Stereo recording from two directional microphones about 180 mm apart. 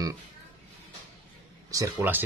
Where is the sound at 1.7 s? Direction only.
20° right (ahead or behind).